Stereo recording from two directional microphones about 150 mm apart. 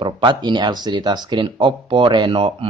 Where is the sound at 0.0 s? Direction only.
30° right (ahead or behind).